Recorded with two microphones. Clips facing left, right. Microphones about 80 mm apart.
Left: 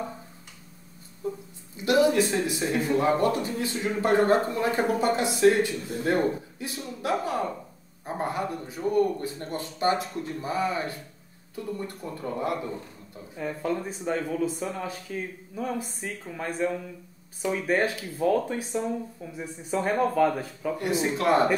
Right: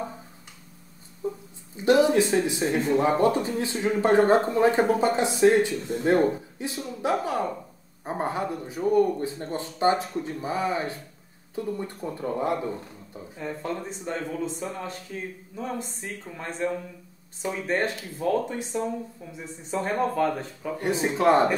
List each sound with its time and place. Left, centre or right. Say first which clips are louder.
1.8 s a sound: right 2 dB; right
2.4 s speech: right 2 dB; right
13.4 s speech: left 3 dB; centre
20.7 s speech: right 1 dB; right